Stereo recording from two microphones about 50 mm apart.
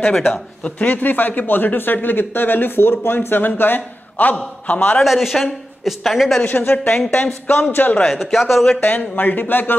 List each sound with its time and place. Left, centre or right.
0.7 s speech: left
5.0 s speech: centre
6.4 s speech: left
8.2 s speech: centre
8.8 s speech: left